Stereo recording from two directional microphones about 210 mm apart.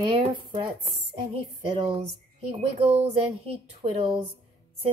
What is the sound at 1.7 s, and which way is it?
A woman's voice, 30° right (ahead or behind).